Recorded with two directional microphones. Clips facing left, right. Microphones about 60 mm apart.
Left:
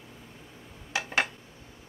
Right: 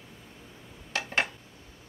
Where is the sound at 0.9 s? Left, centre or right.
Centre.